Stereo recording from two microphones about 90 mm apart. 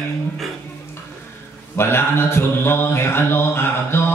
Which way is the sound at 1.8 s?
30° left (ahead or behind).